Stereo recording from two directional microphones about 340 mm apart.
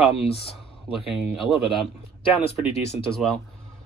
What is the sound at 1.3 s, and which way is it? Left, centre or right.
Speech, centre.